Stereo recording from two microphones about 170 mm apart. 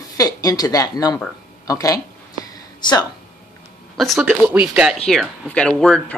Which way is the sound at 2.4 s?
25° left (ahead or behind).